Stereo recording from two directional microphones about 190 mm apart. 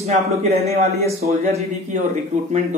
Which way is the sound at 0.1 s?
35° right (ahead or behind).